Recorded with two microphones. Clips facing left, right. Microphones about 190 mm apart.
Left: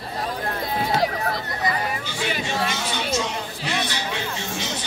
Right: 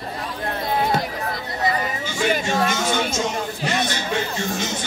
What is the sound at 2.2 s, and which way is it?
Music, 45° right (ahead or behind).